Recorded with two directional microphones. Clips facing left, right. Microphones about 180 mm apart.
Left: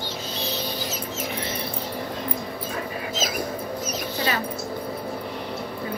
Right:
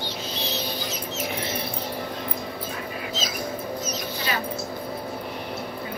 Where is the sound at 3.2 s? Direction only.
50° left (ahead or behind).